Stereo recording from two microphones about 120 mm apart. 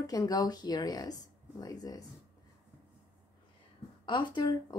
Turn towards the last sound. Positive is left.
turn(degrees=35)  # may be behind; listen again after turning